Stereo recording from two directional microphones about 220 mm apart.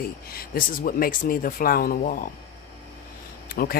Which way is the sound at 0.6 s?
40° left (ahead or behind).